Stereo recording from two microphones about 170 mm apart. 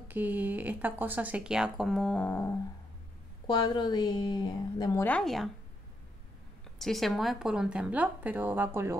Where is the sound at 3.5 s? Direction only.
25° left (ahead or behind).